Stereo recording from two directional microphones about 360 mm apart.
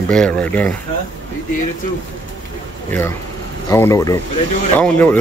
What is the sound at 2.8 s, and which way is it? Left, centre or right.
Speech, centre.